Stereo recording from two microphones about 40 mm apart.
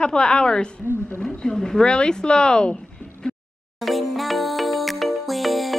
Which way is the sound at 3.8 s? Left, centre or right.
Centre.